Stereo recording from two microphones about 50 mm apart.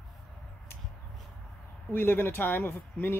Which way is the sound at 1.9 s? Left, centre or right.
Left.